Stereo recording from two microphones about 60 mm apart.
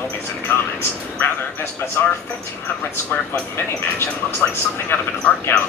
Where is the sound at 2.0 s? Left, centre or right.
Left.